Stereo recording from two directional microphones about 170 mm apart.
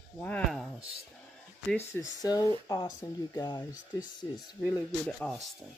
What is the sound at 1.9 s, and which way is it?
Speech, 20° left (ahead or behind).